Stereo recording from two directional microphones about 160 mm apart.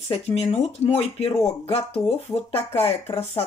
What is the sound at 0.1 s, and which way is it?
Speech, 40° left (ahead or behind).